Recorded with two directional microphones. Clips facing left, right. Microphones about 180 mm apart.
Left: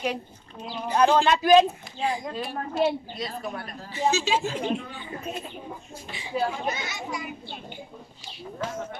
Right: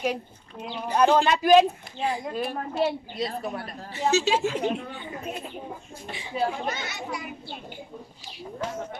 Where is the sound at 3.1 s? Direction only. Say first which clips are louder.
Right 3 dB; 30° right (ahead or behind).